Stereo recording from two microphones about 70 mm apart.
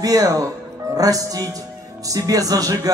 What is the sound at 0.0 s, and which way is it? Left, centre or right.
Speech, right.